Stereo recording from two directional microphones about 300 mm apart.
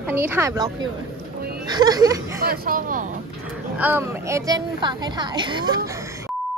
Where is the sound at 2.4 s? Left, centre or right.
Right.